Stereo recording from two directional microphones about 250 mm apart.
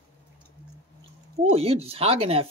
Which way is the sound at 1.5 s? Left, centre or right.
Right.